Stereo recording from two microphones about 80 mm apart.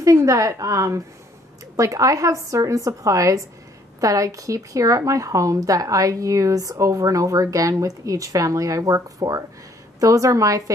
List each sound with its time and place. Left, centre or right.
0.0 s speech: right